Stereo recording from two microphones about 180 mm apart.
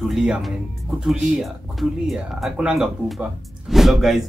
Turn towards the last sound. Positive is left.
turn(degrees=0)  # may be behind; listen again after turning